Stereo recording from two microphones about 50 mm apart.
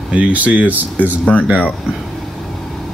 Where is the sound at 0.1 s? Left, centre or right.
Right.